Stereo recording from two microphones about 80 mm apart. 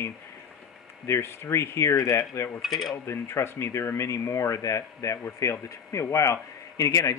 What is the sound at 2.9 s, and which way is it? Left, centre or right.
Speech, left.